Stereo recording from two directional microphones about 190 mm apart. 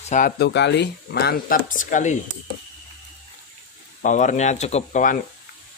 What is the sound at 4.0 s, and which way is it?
Speech, 40° left (ahead or behind).